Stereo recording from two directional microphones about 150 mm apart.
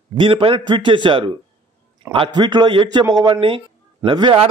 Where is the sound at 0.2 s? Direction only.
35° right (ahead or behind).